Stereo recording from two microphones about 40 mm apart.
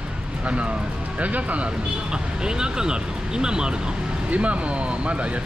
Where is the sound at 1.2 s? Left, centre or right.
Right.